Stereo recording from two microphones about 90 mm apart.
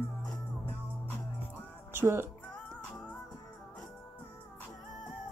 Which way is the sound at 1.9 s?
25° right (ahead or behind).